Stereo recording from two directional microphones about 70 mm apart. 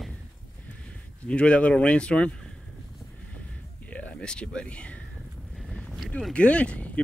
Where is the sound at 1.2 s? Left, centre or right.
Centre.